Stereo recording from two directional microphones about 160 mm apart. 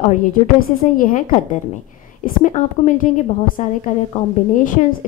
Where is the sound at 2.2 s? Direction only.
60° left (ahead or behind).